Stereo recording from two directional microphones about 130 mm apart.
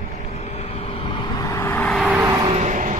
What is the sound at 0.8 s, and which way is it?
Vehicle, 45° left (ahead or behind).